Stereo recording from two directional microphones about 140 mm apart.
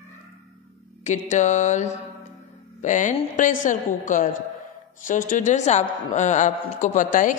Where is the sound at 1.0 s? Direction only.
55° left (ahead or behind).